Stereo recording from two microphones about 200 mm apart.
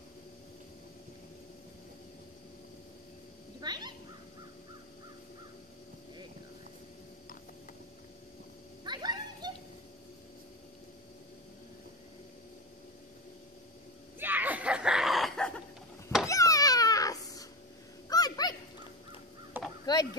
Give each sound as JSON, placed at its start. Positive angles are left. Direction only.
{"t": 3.6, "sound": "speech", "side_deg": -20}
{"t": 8.8, "sound": "a sound", "side_deg": -20}
{"t": 14.2, "sound": "screaming", "side_deg": -10}
{"t": 16.3, "sound": "a sound", "side_deg": 15}
{"t": 18.1, "sound": "dog", "side_deg": 20}
{"t": 19.6, "sound": "caw", "side_deg": -10}